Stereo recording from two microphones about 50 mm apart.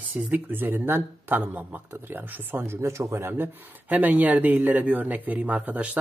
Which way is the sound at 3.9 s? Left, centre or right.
Right.